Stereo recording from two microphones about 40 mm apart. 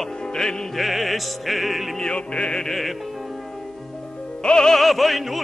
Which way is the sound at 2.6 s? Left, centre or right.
Centre.